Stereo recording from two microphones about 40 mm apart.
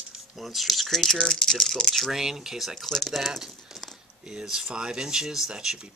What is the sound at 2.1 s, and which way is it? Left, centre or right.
Speech, centre.